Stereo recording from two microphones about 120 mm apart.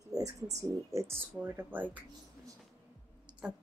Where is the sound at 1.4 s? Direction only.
15° right (ahead or behind).